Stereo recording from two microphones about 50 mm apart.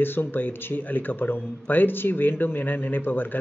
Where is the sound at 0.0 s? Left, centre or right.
Left.